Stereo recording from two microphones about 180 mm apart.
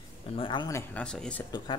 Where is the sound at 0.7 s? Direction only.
15° left (ahead or behind).